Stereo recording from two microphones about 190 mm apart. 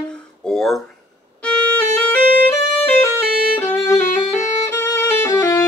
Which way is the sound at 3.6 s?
10° left (ahead or behind).